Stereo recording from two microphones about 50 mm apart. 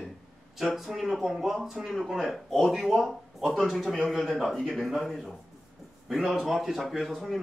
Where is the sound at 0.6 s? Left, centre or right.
Centre.